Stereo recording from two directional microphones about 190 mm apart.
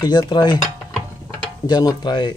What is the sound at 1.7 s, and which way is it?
Speech, 20° left (ahead or behind).